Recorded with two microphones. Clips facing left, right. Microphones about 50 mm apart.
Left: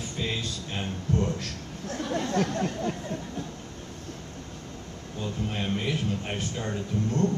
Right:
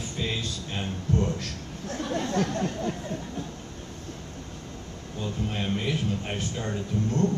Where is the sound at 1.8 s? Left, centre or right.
Centre.